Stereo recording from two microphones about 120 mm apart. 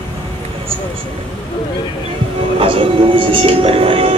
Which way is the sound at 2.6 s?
50° right (ahead or behind).